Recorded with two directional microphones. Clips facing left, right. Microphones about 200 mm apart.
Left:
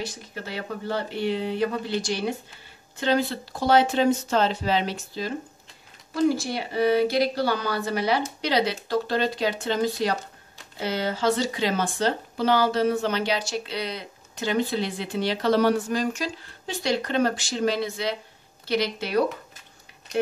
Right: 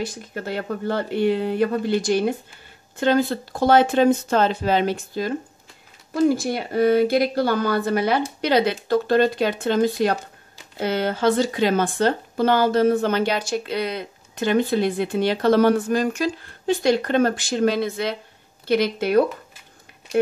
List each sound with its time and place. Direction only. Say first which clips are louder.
0.0 s speech: right 5 dB; 50° right (ahead or behind)